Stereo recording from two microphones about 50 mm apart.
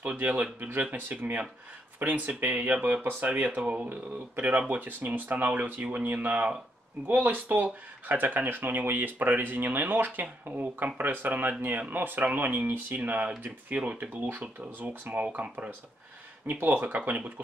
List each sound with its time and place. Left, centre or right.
0.0 s speech: right
0.6 s speech: right